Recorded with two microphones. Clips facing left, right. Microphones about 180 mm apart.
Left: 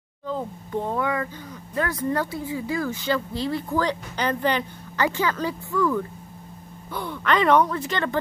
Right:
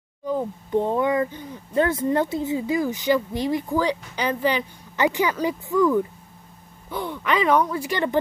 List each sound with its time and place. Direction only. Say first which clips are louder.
0.3 s speech: right 5 dB; 15° right (ahead or behind)
4.9 s speech: right 2 dB; 15° right (ahead or behind)
7.1 s speech: left 1 dB; 5° right (ahead or behind)